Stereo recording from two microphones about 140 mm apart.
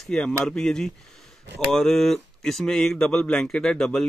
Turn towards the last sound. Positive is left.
turn(degrees=5)  # may be behind; listen again after turning